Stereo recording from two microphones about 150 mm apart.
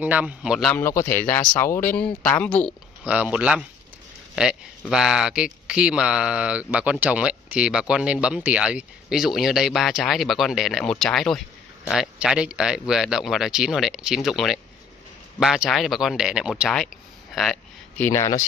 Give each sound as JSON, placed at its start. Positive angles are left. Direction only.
{"t": 0.0, "sound": "a man's voice", "side_deg": -10}
{"t": 0.7, "sound": "speech", "side_deg": 15}
{"t": 3.0, "sound": "speech", "side_deg": -10}
{"t": 17.9, "sound": "speech", "side_deg": 15}